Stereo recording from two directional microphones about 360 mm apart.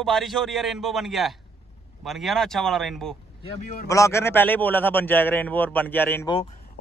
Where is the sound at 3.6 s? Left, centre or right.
Left.